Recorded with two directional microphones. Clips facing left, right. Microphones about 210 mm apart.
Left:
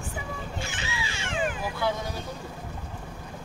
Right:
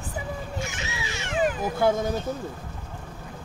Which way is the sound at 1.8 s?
45° right (ahead or behind).